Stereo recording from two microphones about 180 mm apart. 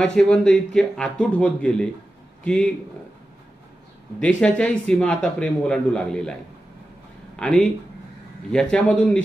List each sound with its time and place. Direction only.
0.0 s a man's voice: 5° left (ahead or behind)
4.4 s a man's voice: 5° left (ahead or behind)
7.3 s a man's voice: 5° left (ahead or behind)